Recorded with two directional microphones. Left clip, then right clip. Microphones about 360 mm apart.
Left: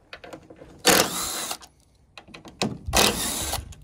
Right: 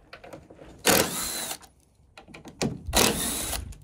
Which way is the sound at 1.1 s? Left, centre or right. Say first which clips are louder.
Left 3 dB; centre.